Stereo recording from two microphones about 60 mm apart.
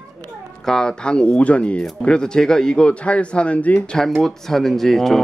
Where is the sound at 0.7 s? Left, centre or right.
Centre.